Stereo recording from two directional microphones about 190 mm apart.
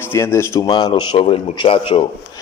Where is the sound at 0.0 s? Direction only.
15° left (ahead or behind).